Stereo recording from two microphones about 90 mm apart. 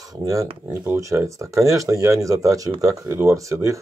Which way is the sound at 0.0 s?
40° right (ahead or behind).